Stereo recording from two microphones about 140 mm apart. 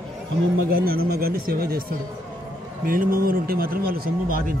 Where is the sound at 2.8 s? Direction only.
90° right.